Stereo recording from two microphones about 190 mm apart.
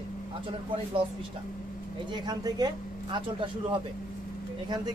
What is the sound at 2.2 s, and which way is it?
Speech, 20° right (ahead or behind).